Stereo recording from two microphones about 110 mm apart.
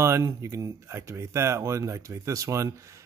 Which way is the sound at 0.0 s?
25° right (ahead or behind).